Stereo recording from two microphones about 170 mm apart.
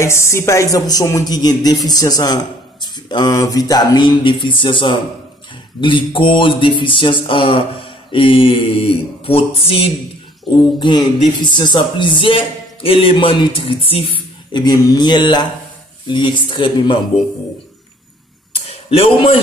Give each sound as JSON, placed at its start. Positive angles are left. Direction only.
{"t": 0.0, "sound": "speech", "side_deg": 15}
{"t": 18.7, "sound": "speech", "side_deg": 35}